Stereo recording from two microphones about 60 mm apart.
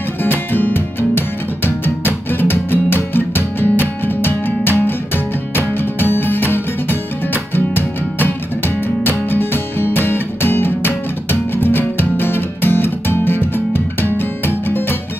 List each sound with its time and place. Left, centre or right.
0.2 s music: left